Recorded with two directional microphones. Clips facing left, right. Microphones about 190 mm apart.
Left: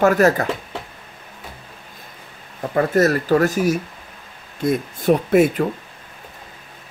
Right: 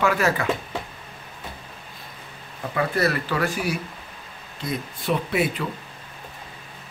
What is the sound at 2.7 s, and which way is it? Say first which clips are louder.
Speech: left 7 dB; 45° left (ahead or behind).